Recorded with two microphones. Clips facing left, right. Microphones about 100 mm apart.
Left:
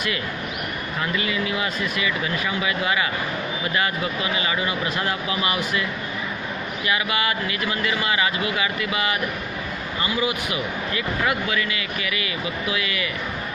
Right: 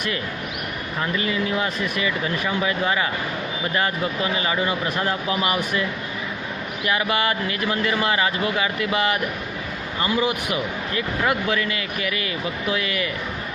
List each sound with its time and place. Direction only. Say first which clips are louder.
1.1 s speech: right 3 dB; 35° right (ahead or behind)
4.2 s speech: right 3 dB; 40° right (ahead or behind)
7.0 s speech: right 2 dB; 40° right (ahead or behind)
10.0 s speech: right 3 dB; 45° right (ahead or behind)